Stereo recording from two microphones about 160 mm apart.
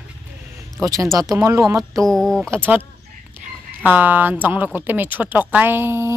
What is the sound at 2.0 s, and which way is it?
Speech, centre (ahead or behind).